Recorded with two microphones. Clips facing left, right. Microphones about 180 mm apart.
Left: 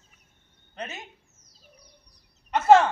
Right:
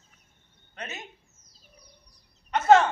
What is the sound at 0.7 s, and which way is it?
Speech, 30° left (ahead or behind).